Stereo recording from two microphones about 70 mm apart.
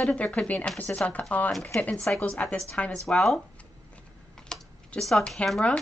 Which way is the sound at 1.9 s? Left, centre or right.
Centre.